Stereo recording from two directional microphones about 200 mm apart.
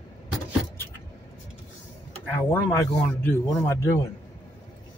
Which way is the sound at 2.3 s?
10° left (ahead or behind).